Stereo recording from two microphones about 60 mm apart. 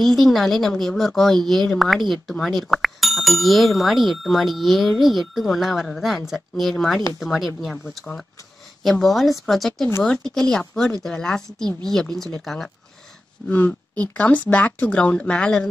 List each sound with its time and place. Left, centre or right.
0.0 s speech: centre
13.5 s speech: left